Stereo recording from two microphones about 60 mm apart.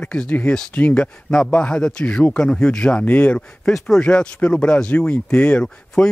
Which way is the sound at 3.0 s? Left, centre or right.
Left.